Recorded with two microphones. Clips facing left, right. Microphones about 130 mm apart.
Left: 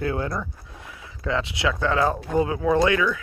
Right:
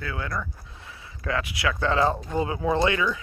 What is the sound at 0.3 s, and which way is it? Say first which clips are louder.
Speech: left 2 dB; 20° left (ahead or behind).